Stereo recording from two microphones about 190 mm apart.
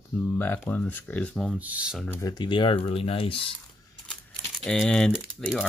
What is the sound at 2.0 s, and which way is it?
Speech, 20° left (ahead or behind).